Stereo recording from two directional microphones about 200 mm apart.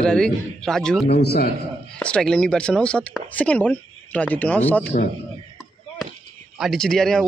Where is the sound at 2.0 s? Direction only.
5° left (ahead or behind).